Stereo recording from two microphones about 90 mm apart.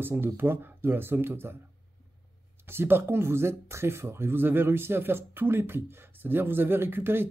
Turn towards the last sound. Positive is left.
turn(degrees=-25)  # may be behind; listen again after turning